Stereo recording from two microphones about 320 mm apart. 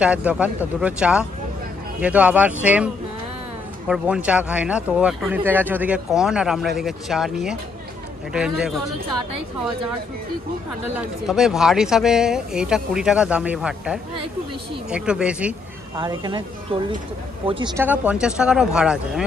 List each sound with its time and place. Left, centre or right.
0.0 s speech: centre
11.0 s speech: centre
16.0 s speech: centre